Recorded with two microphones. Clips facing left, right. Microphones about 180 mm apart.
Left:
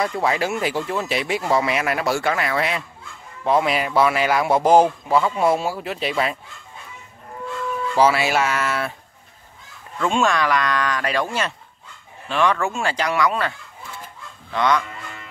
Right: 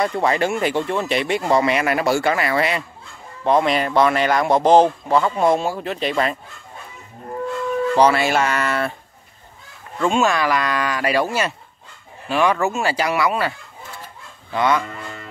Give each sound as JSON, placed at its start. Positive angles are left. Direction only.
{"t": 0.0, "sound": "speech", "side_deg": 0}
{"t": 7.9, "sound": "speech", "side_deg": 5}
{"t": 10.0, "sound": "speech", "side_deg": -5}
{"t": 14.5, "sound": "speech", "side_deg": -5}
{"t": 14.9, "sound": "music", "side_deg": -40}